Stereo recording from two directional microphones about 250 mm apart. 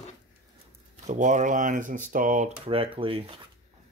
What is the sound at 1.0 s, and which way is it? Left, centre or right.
Speech, right.